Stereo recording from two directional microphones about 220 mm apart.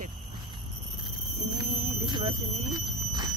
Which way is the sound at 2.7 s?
20° right (ahead or behind).